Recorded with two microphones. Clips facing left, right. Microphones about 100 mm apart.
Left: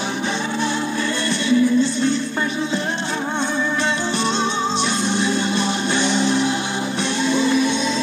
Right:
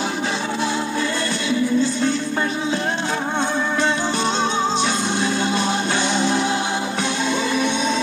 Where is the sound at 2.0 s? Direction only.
50° right (ahead or behind).